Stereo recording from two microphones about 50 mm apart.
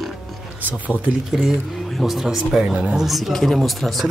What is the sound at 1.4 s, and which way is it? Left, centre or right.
A man's voice, centre.